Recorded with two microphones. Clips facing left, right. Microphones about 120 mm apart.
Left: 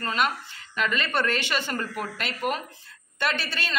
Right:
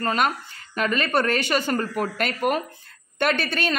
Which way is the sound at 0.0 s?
45° right (ahead or behind).